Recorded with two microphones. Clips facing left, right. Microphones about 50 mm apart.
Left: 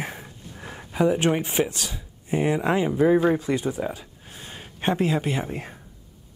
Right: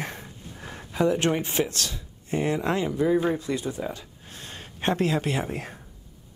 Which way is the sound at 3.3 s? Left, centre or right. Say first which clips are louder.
Left 4 dB; left.